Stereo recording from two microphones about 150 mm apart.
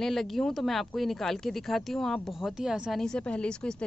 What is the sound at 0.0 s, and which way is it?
Speech, centre (ahead or behind).